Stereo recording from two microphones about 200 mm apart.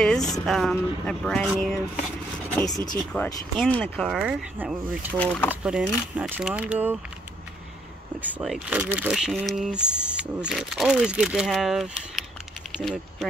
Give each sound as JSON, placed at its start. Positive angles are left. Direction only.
{"t": 0.0, "sound": "speech", "side_deg": 5}
{"t": 2.7, "sound": "speech", "side_deg": 20}
{"t": 3.5, "sound": "speech", "side_deg": 5}
{"t": 4.1, "sound": "speech", "side_deg": -5}
{"t": 5.1, "sound": "speech", "side_deg": 5}
{"t": 5.5, "sound": "speech", "side_deg": -5}
{"t": 8.2, "sound": "speech", "side_deg": -5}